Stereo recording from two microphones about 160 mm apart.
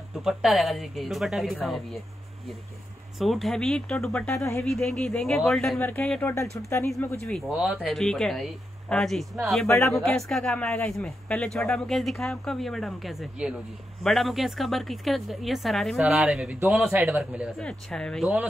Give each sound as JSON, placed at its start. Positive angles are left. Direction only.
{"t": 0.2, "sound": "speech", "side_deg": 0}
{"t": 3.2, "sound": "speech", "side_deg": 0}
{"t": 9.7, "sound": "speech", "side_deg": 20}
{"t": 9.9, "sound": "speech", "side_deg": 0}
{"t": 16.0, "sound": "speech", "side_deg": -10}
{"t": 17.6, "sound": "speech", "side_deg": 5}